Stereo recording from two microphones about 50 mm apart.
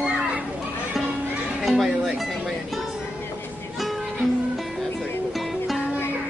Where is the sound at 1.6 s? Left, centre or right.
Centre.